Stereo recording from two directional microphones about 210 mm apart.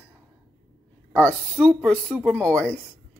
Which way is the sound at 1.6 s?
Centre (ahead or behind).